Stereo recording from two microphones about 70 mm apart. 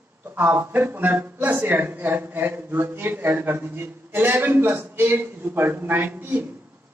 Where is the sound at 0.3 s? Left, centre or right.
Right.